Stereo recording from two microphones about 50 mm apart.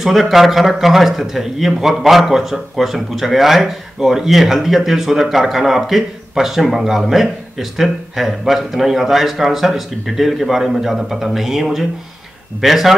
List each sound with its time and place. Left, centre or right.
0.0 s speech: centre